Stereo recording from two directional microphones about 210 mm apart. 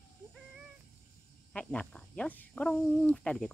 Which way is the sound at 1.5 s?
5° left (ahead or behind).